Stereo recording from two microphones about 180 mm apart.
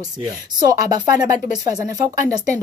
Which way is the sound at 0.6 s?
20° right (ahead or behind).